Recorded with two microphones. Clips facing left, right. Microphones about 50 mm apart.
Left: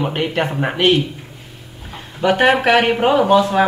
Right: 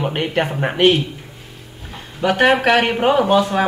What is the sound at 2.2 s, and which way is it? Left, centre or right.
Speech, centre.